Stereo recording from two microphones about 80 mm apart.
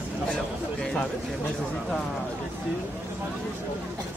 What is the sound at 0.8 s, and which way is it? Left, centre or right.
Speech, centre.